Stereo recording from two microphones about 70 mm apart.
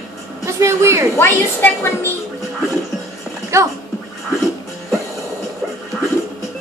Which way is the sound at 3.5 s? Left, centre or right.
Right.